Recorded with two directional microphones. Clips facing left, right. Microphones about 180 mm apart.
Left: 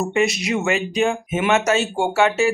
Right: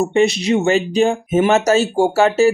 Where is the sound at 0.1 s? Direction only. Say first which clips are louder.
Right 5 dB; 30° right (ahead or behind).